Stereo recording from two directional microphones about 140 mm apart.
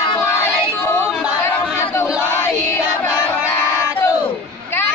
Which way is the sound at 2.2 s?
15° left (ahead or behind).